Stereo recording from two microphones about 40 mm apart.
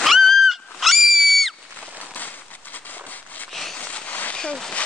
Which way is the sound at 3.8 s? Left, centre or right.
Left.